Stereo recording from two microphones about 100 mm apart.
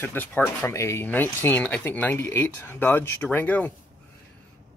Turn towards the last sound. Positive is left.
turn(degrees=15)  # may be behind; listen again after turning